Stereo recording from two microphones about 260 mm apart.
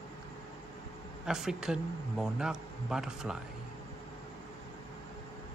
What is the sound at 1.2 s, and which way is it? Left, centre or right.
A man's voice, centre.